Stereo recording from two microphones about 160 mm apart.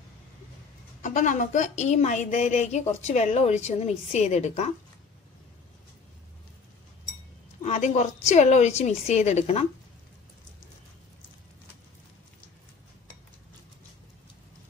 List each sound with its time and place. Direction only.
1.0 s speech: 50° left (ahead or behind)
7.6 s a woman's voice: 50° left (ahead or behind)